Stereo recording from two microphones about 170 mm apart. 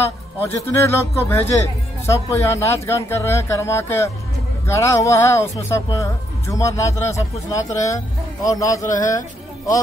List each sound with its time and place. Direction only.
0.4 s speech: 15° left (ahead or behind)